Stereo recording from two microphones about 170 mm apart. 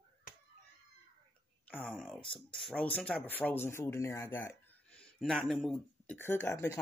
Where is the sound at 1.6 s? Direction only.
10° left (ahead or behind).